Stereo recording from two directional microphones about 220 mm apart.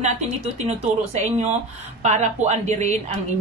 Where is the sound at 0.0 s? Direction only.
30° right (ahead or behind).